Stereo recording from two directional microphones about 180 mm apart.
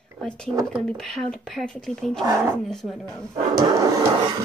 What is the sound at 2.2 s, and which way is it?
Speech, 15° right (ahead or behind).